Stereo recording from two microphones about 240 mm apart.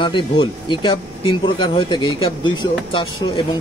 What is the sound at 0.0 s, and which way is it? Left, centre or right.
Speech, centre.